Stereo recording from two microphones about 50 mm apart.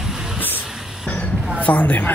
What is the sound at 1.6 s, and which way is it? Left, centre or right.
Speech, left.